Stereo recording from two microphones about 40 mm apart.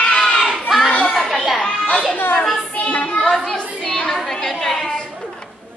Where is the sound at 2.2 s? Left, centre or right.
Left.